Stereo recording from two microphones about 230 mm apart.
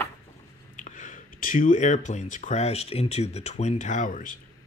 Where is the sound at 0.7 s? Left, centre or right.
Left.